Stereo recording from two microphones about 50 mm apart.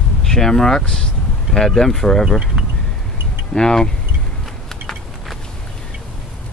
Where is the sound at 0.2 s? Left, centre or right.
Centre.